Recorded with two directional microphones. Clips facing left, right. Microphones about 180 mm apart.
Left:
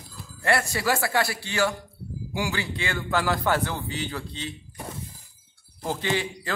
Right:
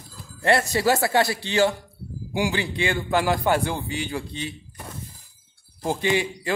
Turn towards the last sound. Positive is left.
turn(degrees=-15)  # may be behind; listen again after turning